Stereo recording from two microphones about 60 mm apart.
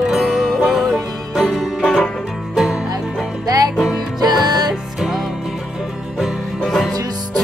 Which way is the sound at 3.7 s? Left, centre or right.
Centre.